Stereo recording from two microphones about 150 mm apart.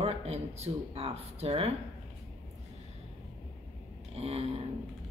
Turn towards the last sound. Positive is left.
turn(degrees=-40)  # may be behind; listen again after turning